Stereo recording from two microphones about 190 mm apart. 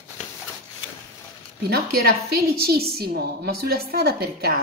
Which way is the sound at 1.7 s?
55° right (ahead or behind).